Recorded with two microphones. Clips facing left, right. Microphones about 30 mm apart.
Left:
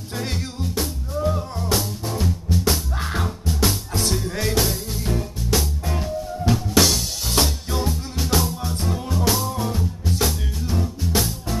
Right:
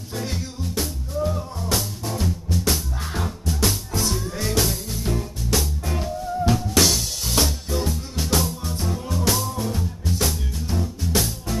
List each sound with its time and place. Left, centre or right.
0.7 s music: centre
3.0 s music: centre
3.3 s music: centre